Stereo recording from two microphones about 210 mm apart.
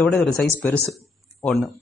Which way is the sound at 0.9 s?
Centre (ahead or behind).